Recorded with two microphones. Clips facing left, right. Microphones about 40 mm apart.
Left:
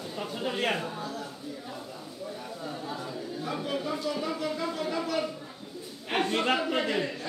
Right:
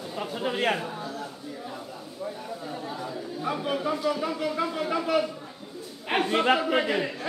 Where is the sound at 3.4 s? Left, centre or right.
Centre.